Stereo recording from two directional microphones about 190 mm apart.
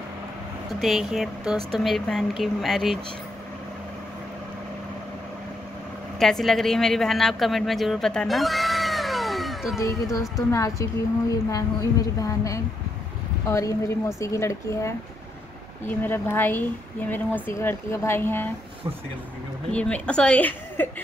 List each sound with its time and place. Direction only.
0.7 s speech: centre (ahead or behind)
6.1 s a woman's voice: centre (ahead or behind)
9.8 s speech: 15° left (ahead or behind)
19.7 s speech: 5° left (ahead or behind)